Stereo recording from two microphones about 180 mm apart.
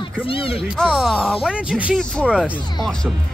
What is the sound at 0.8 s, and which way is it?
Speech, centre (ahead or behind).